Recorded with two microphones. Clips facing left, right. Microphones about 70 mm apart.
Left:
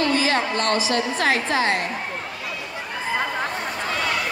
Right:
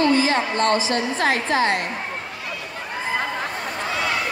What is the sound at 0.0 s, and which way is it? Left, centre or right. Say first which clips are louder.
A woman's voice: right 2 dB; right.